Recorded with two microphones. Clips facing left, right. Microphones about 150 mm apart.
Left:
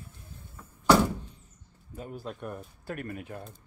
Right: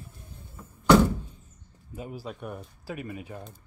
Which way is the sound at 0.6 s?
10° right (ahead or behind).